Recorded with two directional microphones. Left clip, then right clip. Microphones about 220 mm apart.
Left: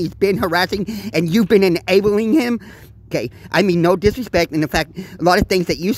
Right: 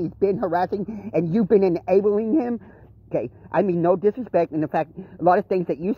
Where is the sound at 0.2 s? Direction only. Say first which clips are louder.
Left 5 dB; 40° left (ahead or behind).